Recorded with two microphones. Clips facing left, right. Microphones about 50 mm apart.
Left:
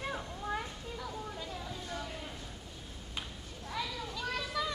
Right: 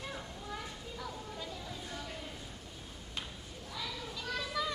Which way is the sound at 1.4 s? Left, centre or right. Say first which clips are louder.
Left 1 dB; centre.